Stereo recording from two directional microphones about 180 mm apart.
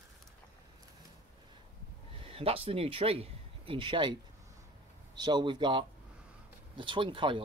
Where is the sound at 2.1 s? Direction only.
30° right (ahead or behind).